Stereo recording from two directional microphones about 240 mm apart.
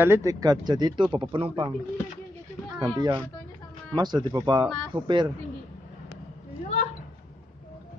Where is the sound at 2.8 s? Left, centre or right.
Centre.